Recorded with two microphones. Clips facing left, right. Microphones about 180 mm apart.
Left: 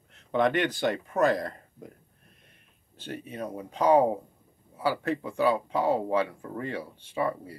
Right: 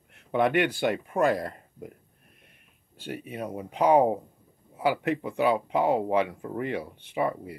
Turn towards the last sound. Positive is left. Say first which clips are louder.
# right 1 dB
turn(degrees=-15)  # may be behind; listen again after turning